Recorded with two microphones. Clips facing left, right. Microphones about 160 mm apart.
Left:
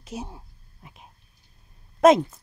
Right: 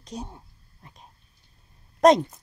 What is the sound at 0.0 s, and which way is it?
Speech, 5° left (ahead or behind).